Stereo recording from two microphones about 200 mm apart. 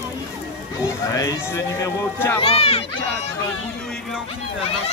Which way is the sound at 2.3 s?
30° left (ahead or behind).